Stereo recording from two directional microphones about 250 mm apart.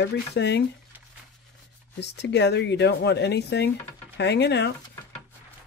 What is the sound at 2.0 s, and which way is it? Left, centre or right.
Speech, left.